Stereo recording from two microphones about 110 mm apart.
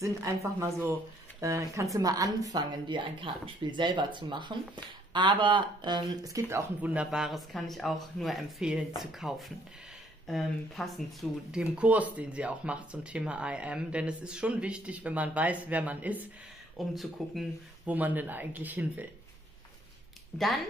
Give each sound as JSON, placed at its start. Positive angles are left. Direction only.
{"t": 0.0, "sound": "a woman's voice", "side_deg": -30}
{"t": 2.9, "sound": "speech", "side_deg": -50}
{"t": 6.8, "sound": "speech", "side_deg": -10}
{"t": 16.7, "sound": "speech", "side_deg": 0}
{"t": 17.8, "sound": "speech", "side_deg": -15}